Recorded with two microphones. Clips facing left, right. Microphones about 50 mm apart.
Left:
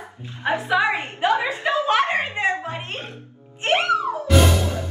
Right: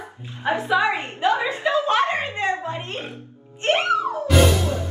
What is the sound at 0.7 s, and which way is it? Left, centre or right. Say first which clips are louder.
Speech: even; left.